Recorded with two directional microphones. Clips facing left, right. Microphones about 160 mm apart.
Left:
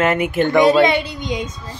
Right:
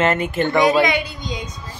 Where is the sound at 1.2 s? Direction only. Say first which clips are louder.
Left 5 dB; 20° left (ahead or behind).